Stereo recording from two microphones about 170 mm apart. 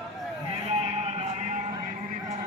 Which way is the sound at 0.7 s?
35° right (ahead or behind).